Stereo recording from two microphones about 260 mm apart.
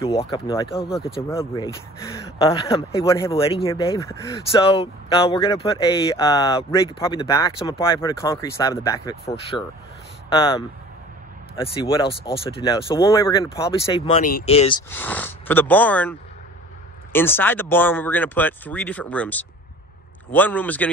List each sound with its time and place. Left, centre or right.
0.1 s speech: left
9.2 s speech: left
14.9 s speech: centre